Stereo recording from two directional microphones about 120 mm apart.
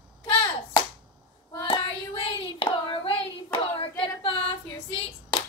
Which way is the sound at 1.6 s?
45° left (ahead or behind).